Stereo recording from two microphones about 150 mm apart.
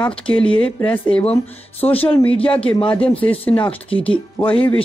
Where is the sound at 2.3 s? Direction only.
35° left (ahead or behind).